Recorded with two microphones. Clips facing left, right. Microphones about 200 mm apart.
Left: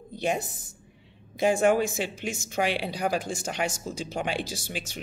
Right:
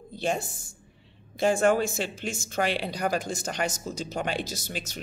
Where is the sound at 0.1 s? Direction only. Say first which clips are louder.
Left 1 dB; 15° left (ahead or behind).